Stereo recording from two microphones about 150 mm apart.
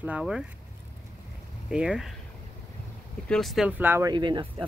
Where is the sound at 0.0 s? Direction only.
5° right (ahead or behind).